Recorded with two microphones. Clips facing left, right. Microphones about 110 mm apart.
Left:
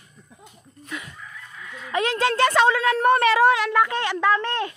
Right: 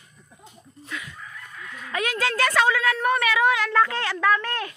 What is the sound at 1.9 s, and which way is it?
A woman's voice, 25° left (ahead or behind).